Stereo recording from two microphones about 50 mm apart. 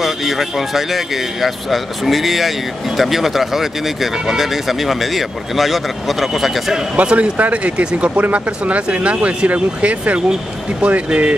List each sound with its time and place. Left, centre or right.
0.0 s speech: centre
7.0 s speech: right